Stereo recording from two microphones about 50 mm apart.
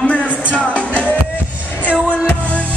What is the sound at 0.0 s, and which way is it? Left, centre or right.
Music, left.